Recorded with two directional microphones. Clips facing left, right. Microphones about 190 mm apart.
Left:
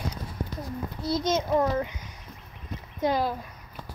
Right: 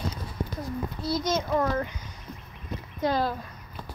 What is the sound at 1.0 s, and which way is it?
A child's voice, 20° left (ahead or behind).